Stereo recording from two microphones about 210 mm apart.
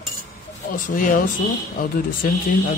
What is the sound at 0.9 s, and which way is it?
Speech, 40° left (ahead or behind).